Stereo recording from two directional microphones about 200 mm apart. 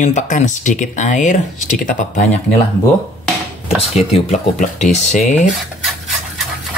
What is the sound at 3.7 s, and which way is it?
Speech, 30° left (ahead or behind).